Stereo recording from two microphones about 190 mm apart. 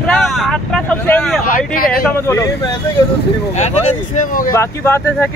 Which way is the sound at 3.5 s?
35° left (ahead or behind).